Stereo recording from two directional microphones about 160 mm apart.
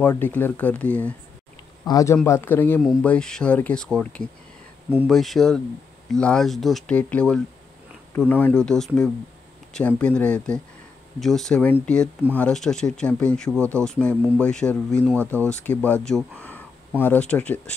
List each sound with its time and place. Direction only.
0.0 s speech: 10° left (ahead or behind)
1.9 s speech: 20° left (ahead or behind); by 13.6 s 5° left (ahead or behind)
13.6 s speech: 15° right (ahead or behind)
13.8 s speech: 5° left (ahead or behind)